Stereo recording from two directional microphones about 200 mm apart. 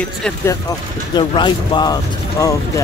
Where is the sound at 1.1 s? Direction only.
25° left (ahead or behind).